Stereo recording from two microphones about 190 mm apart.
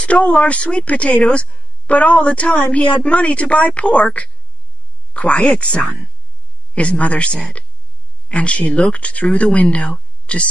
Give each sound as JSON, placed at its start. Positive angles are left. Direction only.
{"t": 0.0, "sound": "speech", "side_deg": 5}